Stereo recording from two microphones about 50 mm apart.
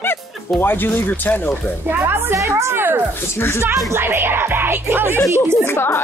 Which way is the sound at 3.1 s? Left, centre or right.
Left.